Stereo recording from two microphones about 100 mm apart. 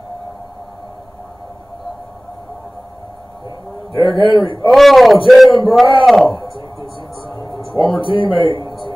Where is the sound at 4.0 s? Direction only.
60° left (ahead or behind).